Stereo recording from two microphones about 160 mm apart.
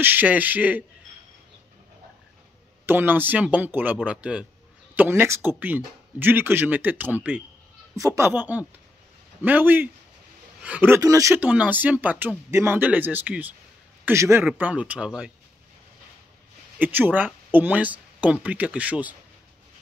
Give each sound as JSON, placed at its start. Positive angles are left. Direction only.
{"t": 0.0, "sound": "speech", "side_deg": -10}
{"t": 2.9, "sound": "speech", "side_deg": -15}
{"t": 16.7, "sound": "speech", "side_deg": -10}